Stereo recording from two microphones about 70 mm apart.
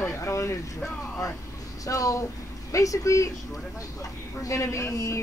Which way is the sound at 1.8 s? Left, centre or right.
Left.